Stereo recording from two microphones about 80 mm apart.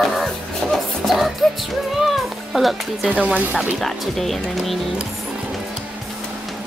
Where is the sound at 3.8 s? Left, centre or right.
Centre.